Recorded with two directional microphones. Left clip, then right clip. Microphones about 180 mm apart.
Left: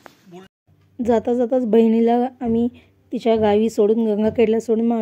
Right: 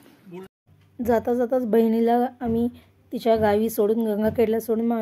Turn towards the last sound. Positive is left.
turn(degrees=15)  # may be behind; listen again after turning